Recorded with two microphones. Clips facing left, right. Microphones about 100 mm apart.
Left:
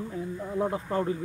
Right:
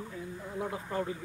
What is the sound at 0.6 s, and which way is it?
Speech, 40° left (ahead or behind).